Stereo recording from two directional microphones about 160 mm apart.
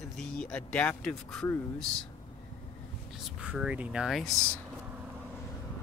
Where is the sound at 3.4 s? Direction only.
5° right (ahead or behind).